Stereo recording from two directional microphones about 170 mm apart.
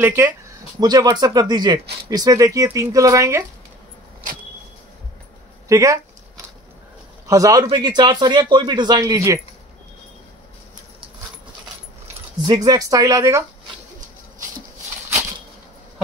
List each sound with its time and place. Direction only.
0.0 s speech: 15° right (ahead or behind)
5.7 s speech: 20° right (ahead or behind)
7.2 s speech: 20° right (ahead or behind)
12.4 s speech: 20° right (ahead or behind)